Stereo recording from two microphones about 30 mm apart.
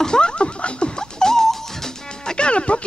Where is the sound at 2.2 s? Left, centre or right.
Left.